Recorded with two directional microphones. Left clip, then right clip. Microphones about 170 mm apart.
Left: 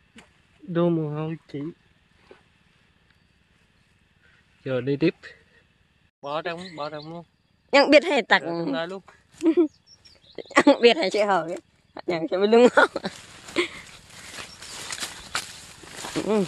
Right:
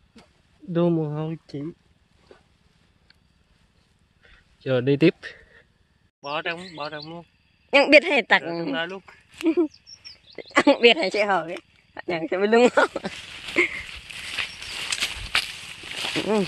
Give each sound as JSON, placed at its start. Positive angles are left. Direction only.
{"t": 0.7, "sound": "speech", "side_deg": -40}
{"t": 4.6, "sound": "speech", "side_deg": -45}
{"t": 6.2, "sound": "speech", "side_deg": 15}
{"t": 8.7, "sound": "speech", "side_deg": 20}
{"t": 10.3, "sound": "a sound", "side_deg": 10}
{"t": 10.8, "sound": "speech", "side_deg": 0}
{"t": 16.0, "sound": "a sound", "side_deg": -15}